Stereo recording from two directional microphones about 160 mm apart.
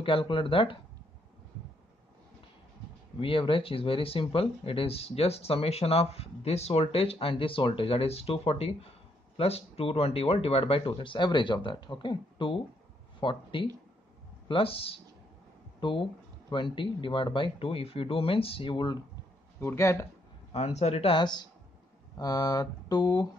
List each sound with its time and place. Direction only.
0.0 s speech: 35° left (ahead or behind)
3.2 s speech: 35° left (ahead or behind)
19.6 s speech: 15° left (ahead or behind)
20.5 s speech: 40° left (ahead or behind); by 23.2 s 25° left (ahead or behind)